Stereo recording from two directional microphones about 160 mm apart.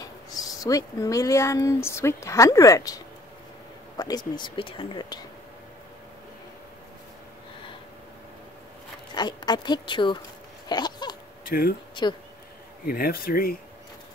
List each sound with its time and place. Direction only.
0.0 s speech: 20° left (ahead or behind)
9.1 s speech: 25° left (ahead or behind)
10.7 s a sound: 25° left (ahead or behind)
11.4 s speech: 70° left (ahead or behind)
11.9 s speech: 30° left (ahead or behind)
12.8 s speech: 65° left (ahead or behind)